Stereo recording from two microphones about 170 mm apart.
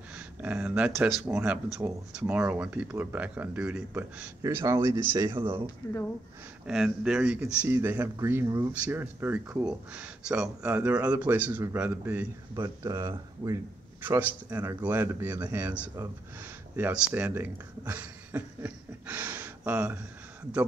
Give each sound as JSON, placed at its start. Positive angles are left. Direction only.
{"t": 0.1, "sound": "speech", "side_deg": -10}
{"t": 6.7, "sound": "speech", "side_deg": -5}